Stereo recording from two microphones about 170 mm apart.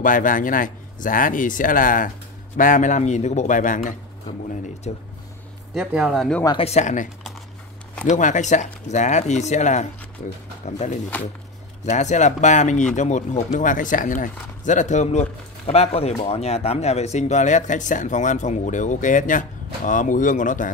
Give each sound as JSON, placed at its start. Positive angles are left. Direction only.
{"t": 0.0, "sound": "speech", "side_deg": 50}
{"t": 4.9, "sound": "speech", "side_deg": 40}
{"t": 5.8, "sound": "speech", "side_deg": 0}
{"t": 6.4, "sound": "speech", "side_deg": 35}
{"t": 8.1, "sound": "speech", "side_deg": 45}